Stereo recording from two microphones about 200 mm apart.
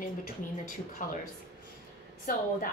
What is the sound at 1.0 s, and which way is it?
Speech, 40° left (ahead or behind).